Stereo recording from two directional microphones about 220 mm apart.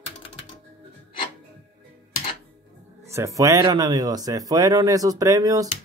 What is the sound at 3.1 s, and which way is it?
Speech, 15° right (ahead or behind).